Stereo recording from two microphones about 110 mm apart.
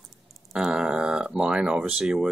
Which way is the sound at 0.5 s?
5° right (ahead or behind).